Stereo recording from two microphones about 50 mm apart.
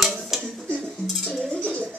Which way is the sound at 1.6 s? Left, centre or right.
Right.